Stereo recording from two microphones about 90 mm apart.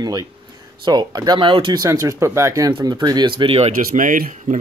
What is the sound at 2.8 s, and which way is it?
Speech, 50° right (ahead or behind).